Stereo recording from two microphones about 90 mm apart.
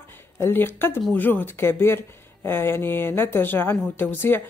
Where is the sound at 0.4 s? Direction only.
25° left (ahead or behind).